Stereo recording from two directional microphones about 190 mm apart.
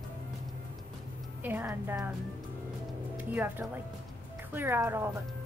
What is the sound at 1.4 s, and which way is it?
Speech, 10° right (ahead or behind).